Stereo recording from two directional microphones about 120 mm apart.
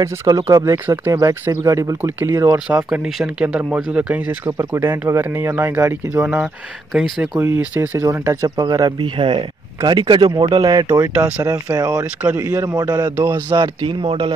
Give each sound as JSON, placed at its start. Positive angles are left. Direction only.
{"t": 0.0, "sound": "speech", "side_deg": -25}
{"t": 2.5, "sound": "speech", "side_deg": -10}
{"t": 6.9, "sound": "speech", "side_deg": -5}
{"t": 7.3, "sound": "speech", "side_deg": -15}
{"t": 9.1, "sound": "speech", "side_deg": -45}
{"t": 11.1, "sound": "speech", "side_deg": -15}
{"t": 11.4, "sound": "speech", "side_deg": -30}
{"t": 13.1, "sound": "speech", "side_deg": -20}
{"t": 13.5, "sound": "speech", "side_deg": -40}